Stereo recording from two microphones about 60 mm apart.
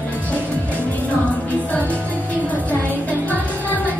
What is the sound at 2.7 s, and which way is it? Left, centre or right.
Music, left.